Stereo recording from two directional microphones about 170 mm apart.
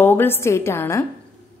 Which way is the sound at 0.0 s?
10° left (ahead or behind).